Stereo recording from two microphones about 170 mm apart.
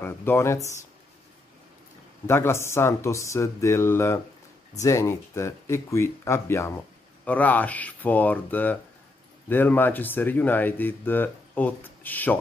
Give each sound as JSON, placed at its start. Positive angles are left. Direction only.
{"t": 0.0, "sound": "speech", "side_deg": 15}
{"t": 2.2, "sound": "speech", "side_deg": 15}